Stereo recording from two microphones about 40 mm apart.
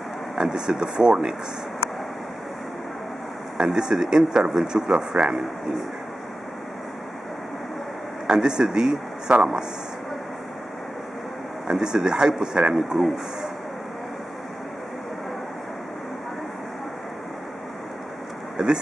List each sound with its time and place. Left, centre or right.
0.4 s speech: centre
3.5 s speech: centre
8.3 s speech: centre
11.7 s speech: centre
12.7 s speech: centre
18.6 s speech: centre